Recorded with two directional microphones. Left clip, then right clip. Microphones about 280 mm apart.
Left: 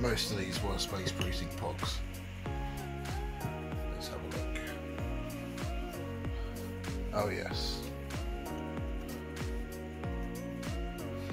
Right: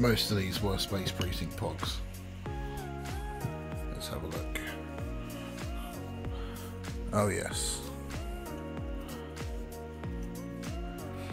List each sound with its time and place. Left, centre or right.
0.0 s speech: right
7.1 s speech: right